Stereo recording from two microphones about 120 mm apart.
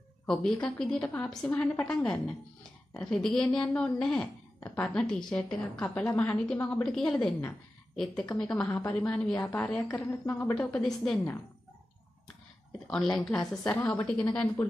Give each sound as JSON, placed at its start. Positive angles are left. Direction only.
{"t": 0.3, "sound": "a woman's voice", "side_deg": 5}
{"t": 10.0, "sound": "a woman's voice", "side_deg": 15}
{"t": 10.5, "sound": "a woman's voice", "side_deg": 5}
{"t": 12.9, "sound": "a woman's voice", "side_deg": 5}
{"t": 13.7, "sound": "a woman's voice", "side_deg": 20}
{"t": 14.0, "sound": "a woman's voice", "side_deg": 10}